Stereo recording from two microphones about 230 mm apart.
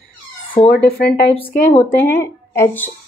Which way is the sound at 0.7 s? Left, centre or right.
Left.